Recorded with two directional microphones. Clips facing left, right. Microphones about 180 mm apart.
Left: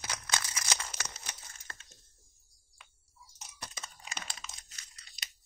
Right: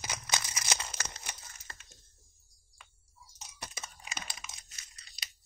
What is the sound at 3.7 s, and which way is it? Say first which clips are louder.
Computer keyboard: even; 10° right (ahead or behind).